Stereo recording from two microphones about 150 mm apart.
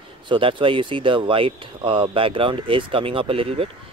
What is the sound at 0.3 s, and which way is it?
Speech, 35° right (ahead or behind).